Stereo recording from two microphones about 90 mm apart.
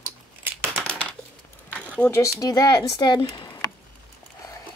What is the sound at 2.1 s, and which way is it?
Speech, 35° left (ahead or behind).